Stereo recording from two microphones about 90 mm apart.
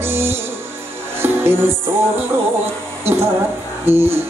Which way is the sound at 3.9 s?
25° right (ahead or behind).